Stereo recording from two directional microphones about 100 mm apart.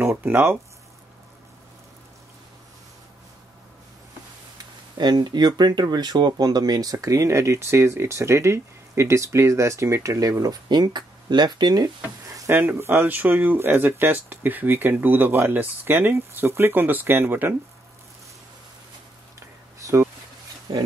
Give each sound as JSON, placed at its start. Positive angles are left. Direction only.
{"t": 0.0, "sound": "speech", "side_deg": -20}
{"t": 4.9, "sound": "speech", "side_deg": -45}
{"t": 12.4, "sound": "speech", "side_deg": -20}
{"t": 19.8, "sound": "a sound", "side_deg": -30}
{"t": 20.7, "sound": "speech", "side_deg": -50}